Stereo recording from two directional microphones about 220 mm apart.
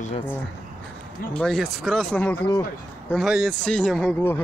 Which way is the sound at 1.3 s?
5° left (ahead or behind).